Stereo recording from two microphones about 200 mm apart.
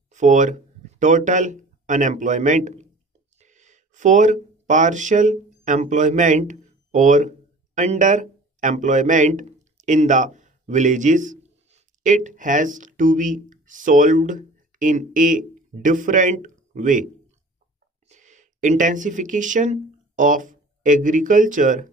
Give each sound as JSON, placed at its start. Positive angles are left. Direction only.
{"t": 0.1, "sound": "speech", "side_deg": -40}